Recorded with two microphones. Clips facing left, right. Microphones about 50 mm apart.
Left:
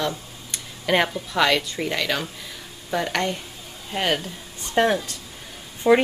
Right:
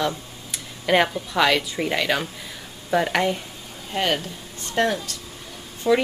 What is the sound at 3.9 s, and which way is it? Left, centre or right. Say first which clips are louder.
Speech: even; centre.